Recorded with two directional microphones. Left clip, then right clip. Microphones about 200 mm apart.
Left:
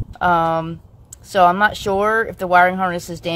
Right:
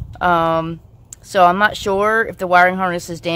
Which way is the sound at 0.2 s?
15° right (ahead or behind).